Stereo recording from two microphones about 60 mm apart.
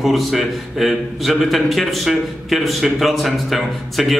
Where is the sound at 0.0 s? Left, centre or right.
Centre.